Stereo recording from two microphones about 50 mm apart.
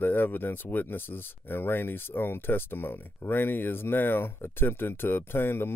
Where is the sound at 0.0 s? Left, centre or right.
Left.